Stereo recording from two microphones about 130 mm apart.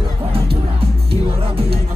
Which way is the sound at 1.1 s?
45° right (ahead or behind).